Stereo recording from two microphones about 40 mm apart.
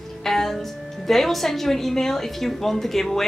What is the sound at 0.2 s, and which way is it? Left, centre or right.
A woman's voice, centre.